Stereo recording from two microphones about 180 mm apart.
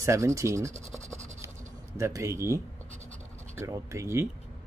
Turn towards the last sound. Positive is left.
turn(degrees=-15)  # may be behind; listen again after turning